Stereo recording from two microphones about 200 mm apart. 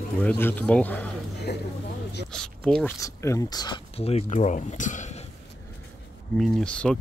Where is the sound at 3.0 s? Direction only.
15° left (ahead or behind); by 5.2 s 35° left (ahead or behind).